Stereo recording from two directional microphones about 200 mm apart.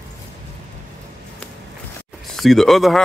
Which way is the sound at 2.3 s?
Centre (ahead or behind).